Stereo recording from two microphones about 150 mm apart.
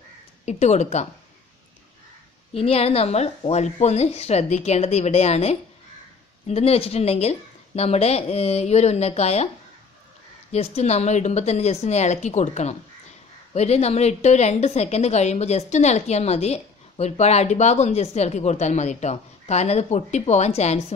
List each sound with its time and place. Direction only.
0.5 s a woman's voice: 50° left (ahead or behind)
2.5 s a woman's voice: 40° left (ahead or behind)
10.5 s a woman's voice: 45° left (ahead or behind)